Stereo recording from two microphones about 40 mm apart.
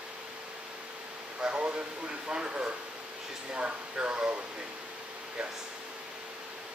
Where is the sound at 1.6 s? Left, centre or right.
Right.